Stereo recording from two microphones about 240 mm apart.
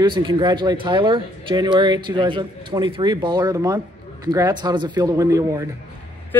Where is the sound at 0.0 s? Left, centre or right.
Centre.